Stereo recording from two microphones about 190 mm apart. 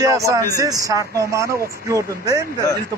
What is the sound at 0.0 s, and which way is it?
Speech, 15° right (ahead or behind).